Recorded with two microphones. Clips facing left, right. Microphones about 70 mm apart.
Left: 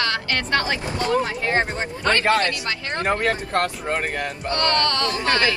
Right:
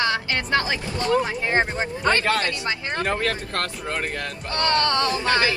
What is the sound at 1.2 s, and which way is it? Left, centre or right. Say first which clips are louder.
Speech: even; centre.